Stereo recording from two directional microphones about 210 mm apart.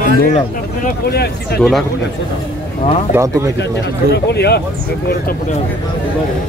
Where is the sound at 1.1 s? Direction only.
50° left (ahead or behind).